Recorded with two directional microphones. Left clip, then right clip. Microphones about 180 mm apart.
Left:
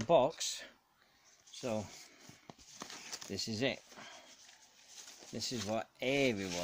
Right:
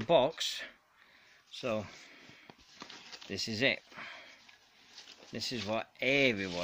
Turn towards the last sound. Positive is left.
turn(degrees=0)  # may be behind; listen again after turning